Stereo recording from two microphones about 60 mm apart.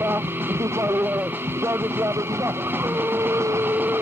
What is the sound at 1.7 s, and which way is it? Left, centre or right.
Vehicle, right.